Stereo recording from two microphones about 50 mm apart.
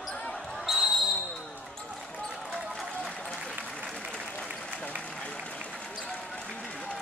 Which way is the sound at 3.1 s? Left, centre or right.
Centre.